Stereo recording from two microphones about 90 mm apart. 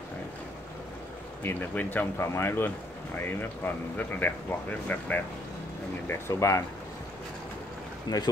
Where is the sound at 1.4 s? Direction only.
20° left (ahead or behind).